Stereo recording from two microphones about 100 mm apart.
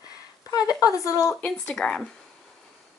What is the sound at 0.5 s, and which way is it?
Speech, 35° left (ahead or behind).